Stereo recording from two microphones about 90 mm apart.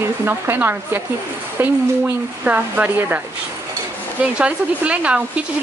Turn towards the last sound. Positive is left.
turn(degrees=-15)  # may be behind; listen again after turning